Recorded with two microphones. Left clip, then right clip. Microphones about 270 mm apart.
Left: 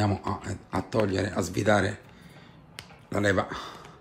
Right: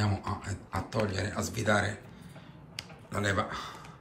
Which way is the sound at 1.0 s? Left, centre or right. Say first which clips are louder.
Left 5 dB; left.